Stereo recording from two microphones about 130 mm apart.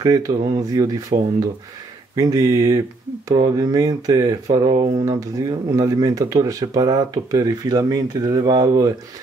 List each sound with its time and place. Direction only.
0.0 s speech: 30° right (ahead or behind)
2.1 s speech: 30° right (ahead or behind)